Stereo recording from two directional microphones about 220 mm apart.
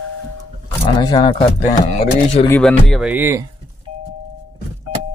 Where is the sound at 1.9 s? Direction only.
40° left (ahead or behind).